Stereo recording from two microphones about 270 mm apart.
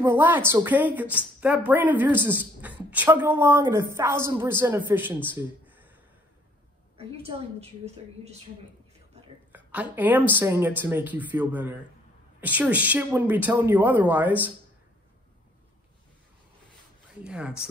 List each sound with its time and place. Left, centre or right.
0.0 s a woman's voice: centre
7.0 s a woman's voice: right
9.5 s a sound: centre
9.9 s a woman's voice: centre
17.2 s speech: centre